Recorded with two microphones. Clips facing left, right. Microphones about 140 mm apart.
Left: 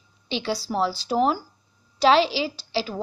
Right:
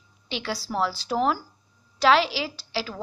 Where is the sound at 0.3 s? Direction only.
20° left (ahead or behind).